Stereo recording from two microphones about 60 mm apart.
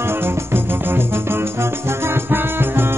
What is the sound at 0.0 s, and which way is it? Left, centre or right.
Music, right.